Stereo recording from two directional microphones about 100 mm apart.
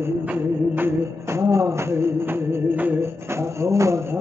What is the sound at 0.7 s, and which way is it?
Music, 25° right (ahead or behind).